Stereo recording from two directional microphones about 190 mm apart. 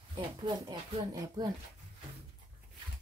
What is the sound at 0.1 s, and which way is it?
Speech, 25° right (ahead or behind).